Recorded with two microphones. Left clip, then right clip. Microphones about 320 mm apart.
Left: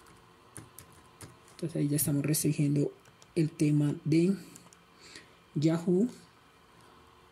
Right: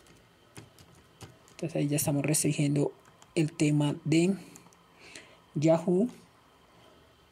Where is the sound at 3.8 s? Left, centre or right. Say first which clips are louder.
Right 1 dB; centre.